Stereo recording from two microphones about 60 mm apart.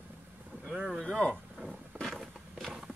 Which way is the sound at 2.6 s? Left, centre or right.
Centre.